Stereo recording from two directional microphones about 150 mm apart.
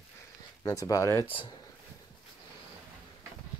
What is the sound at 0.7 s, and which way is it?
Speech, 25° left (ahead or behind).